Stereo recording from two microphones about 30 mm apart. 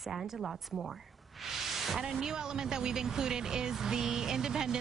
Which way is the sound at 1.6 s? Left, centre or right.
Centre.